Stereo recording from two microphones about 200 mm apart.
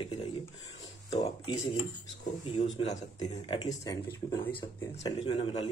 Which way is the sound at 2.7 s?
35° left (ahead or behind).